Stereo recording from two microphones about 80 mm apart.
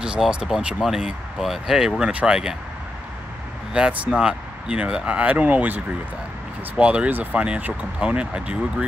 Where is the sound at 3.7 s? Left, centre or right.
Centre.